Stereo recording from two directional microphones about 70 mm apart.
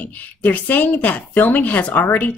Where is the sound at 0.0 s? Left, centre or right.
Left.